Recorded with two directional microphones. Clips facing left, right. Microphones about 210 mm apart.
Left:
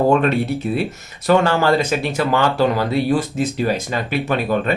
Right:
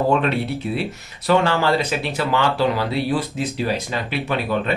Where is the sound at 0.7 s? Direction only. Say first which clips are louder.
Left 3 dB; 45° left (ahead or behind).